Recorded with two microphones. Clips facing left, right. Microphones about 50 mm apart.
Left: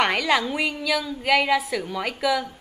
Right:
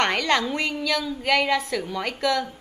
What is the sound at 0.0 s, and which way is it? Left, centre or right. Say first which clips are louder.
A woman's voice: left 1 dB; centre.